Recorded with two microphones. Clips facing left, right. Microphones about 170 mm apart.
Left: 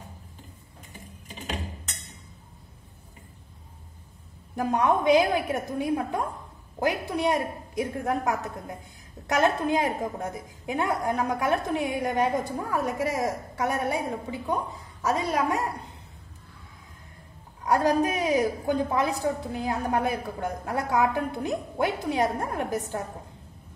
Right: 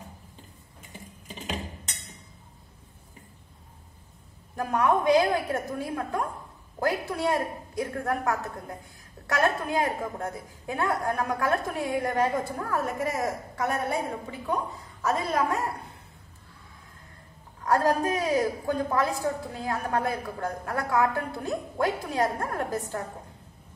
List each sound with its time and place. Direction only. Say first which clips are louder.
4.6 s a woman's voice: left 1 dB; 20° left (ahead or behind)
17.6 s a woman's voice: left 1 dB; 20° left (ahead or behind)